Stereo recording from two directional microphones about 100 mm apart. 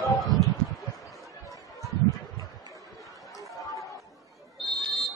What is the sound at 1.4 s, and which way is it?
Chatter, 35° left (ahead or behind).